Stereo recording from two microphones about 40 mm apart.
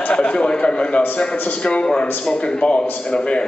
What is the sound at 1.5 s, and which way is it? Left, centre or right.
A man's voice, left.